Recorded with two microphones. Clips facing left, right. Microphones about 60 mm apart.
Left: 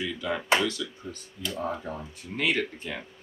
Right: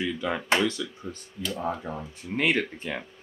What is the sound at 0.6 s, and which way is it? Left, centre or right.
Speech, right.